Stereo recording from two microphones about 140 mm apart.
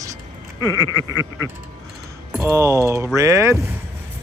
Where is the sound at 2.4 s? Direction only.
20° right (ahead or behind).